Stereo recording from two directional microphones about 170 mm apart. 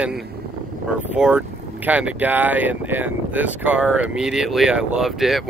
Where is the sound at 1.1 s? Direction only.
10° right (ahead or behind).